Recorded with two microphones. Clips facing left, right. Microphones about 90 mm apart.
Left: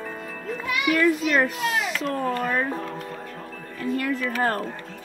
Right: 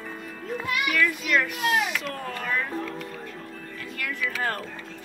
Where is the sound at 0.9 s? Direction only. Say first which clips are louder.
Left 5 dB; 30° left (ahead or behind).